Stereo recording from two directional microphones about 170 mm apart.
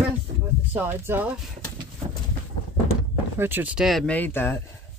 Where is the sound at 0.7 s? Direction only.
10° right (ahead or behind).